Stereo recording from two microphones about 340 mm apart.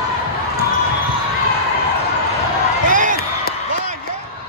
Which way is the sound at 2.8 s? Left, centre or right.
Right.